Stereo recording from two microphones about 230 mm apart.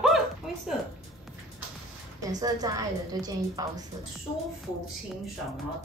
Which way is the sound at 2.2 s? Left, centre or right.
Centre.